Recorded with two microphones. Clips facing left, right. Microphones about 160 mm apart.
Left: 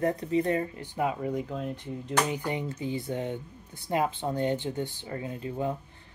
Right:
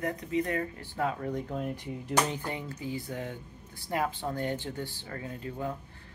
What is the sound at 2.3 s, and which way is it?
Speech, 15° left (ahead or behind).